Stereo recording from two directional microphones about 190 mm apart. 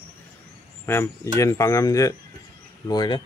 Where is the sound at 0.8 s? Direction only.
15° left (ahead or behind).